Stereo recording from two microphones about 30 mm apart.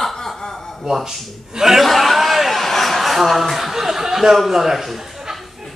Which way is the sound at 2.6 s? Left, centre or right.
Centre.